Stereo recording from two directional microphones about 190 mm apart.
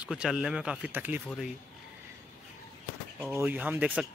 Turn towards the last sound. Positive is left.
turn(degrees=-5)  # may be behind; listen again after turning